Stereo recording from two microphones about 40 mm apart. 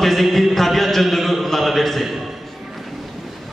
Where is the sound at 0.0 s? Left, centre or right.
Centre.